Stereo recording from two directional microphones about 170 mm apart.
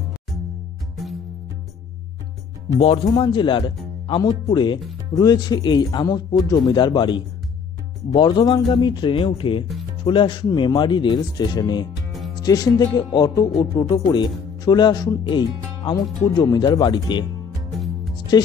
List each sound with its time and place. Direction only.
2.8 s speech: 30° left (ahead or behind)
17.7 s music: centre (ahead or behind)
18.3 s speech: 20° left (ahead or behind)